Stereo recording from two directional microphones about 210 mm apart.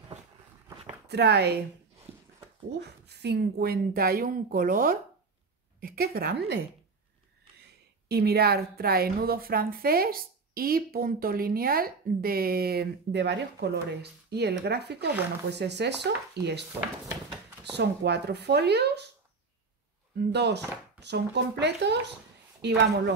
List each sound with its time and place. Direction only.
1.0 s speech: 50° right (ahead or behind)
2.1 s dog: 30° right (ahead or behind)
2.8 s a woman's voice: 50° right (ahead or behind)
8.1 s a woman's voice: 50° right (ahead or behind)
17.7 s a woman's voice: 55° right (ahead or behind)
20.2 s a woman's voice: 55° right (ahead or behind)